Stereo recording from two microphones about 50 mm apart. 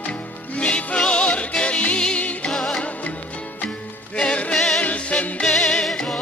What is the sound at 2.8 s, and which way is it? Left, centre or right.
Music, left.